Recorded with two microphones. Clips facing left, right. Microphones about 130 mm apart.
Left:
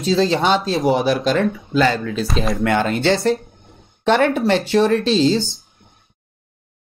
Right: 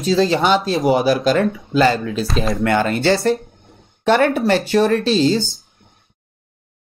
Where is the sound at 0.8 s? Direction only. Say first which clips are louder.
Right 2 dB; 5° right (ahead or behind).